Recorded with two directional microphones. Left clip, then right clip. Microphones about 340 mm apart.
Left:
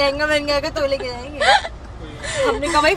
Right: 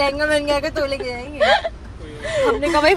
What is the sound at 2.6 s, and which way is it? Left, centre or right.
Speech, centre.